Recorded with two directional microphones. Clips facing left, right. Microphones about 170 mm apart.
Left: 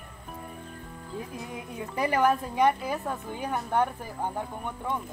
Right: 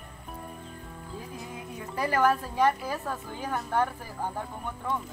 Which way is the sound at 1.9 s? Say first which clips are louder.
Left 1 dB; 20° left (ahead or behind).